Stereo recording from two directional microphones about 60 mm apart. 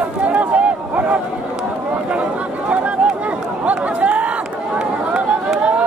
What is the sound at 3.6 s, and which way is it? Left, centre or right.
Speech, right.